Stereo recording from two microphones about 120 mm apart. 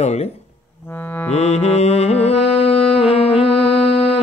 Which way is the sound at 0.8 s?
15° left (ahead or behind).